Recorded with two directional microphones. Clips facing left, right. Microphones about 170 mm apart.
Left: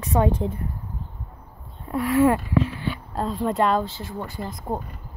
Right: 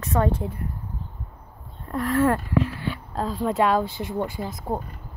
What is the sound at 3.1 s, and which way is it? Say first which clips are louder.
Speech: even; centre (ahead or behind).